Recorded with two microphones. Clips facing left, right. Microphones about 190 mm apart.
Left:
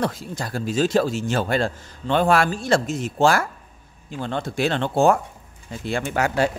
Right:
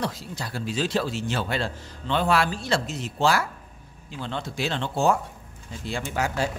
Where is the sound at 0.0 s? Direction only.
50° left (ahead or behind).